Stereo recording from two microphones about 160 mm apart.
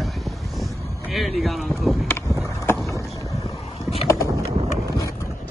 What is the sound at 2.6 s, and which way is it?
Rowboat, 15° left (ahead or behind).